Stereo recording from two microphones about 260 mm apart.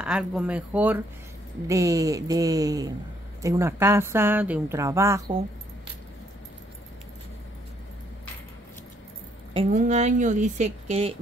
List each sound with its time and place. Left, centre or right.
0.0 s a woman's voice: centre
9.5 s speech: right